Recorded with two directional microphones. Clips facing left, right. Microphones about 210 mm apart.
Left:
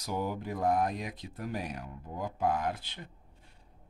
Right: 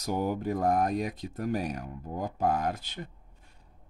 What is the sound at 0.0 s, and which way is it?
Speech, 45° right (ahead or behind).